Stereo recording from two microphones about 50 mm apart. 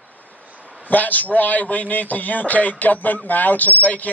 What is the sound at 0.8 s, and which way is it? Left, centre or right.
A man's voice, left.